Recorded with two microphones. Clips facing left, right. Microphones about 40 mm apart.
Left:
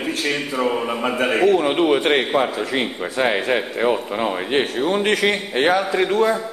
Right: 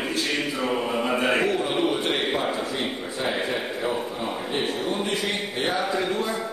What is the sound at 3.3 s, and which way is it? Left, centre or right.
A man's voice, left.